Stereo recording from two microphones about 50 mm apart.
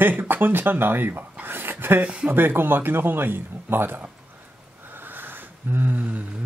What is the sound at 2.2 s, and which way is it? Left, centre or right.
Speech, right.